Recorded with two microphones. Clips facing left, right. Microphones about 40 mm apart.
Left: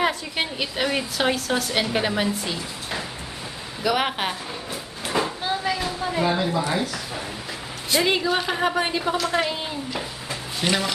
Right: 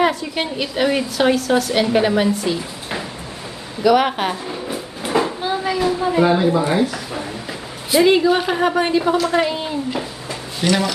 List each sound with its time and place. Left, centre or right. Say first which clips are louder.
0.0 s a woman's voice: right 5 dB; centre
3.8 s a woman's voice: right 8 dB; centre
4.5 s train: right 6 dB; centre
5.9 s a woman's voice: right 8 dB; centre
7.9 s a woman's voice: right 8 dB; centre